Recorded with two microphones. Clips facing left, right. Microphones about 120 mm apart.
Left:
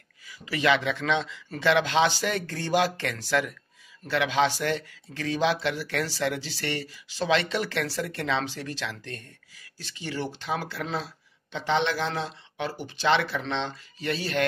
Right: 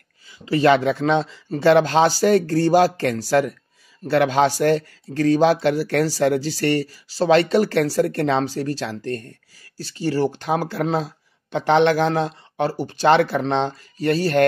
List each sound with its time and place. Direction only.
0.3 s speech: 35° right (ahead or behind)